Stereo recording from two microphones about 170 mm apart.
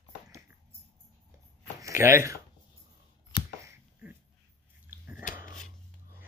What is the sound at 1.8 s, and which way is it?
Speech, 15° right (ahead or behind).